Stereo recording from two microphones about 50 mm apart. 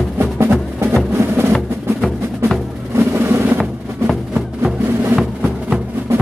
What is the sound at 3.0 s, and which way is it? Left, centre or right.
Vehicle, right.